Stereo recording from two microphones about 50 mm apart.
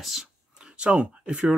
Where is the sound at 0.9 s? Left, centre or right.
Right.